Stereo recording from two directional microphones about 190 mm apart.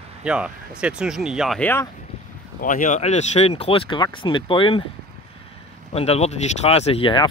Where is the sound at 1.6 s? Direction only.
10° left (ahead or behind).